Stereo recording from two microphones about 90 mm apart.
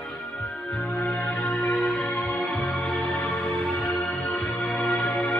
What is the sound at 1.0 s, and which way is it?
Music, 15° left (ahead or behind).